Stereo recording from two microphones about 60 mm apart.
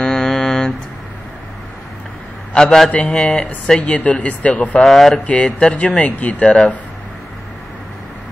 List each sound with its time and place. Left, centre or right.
0.0 s mantra: centre
2.5 s a man's voice: centre
4.8 s speech: centre
5.2 s speech: centre